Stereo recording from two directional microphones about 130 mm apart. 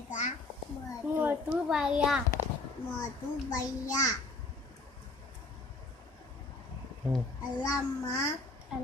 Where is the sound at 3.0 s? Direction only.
25° left (ahead or behind).